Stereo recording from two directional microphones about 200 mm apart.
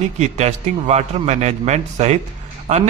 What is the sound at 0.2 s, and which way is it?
A man's voice, 35° right (ahead or behind).